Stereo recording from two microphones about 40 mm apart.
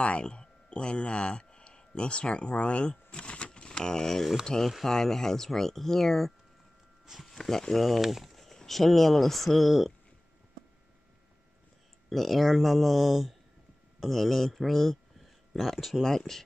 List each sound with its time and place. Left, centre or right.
0.0 s speech: left; by 9.9 s centre
12.1 s speech: centre